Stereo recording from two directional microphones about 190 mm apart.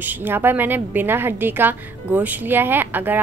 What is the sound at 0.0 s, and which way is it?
A woman's voice, 10° right (ahead or behind).